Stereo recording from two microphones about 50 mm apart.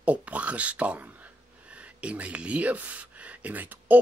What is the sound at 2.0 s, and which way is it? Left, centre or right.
Speech, right.